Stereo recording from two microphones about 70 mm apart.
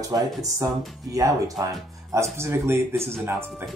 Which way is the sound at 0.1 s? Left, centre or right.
Right.